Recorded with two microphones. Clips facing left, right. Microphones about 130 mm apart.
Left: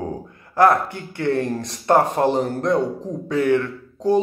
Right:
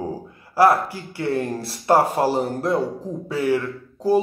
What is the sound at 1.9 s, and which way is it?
Speech, 5° right (ahead or behind).